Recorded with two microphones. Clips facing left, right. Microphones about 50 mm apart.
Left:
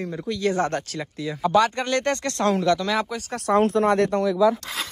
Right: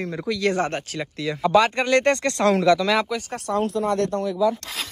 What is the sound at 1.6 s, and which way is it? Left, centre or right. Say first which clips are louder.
Speech: right 2 dB; right.